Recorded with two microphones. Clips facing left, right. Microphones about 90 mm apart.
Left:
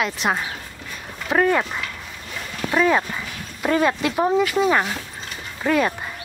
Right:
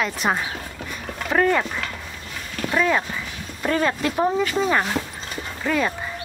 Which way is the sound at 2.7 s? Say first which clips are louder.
Left 2 dB; 15° left (ahead or behind).